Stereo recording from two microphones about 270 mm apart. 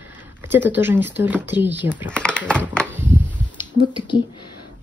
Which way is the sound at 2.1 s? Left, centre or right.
Centre.